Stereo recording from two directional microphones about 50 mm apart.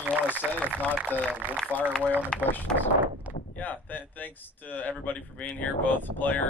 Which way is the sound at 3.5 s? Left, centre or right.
Left.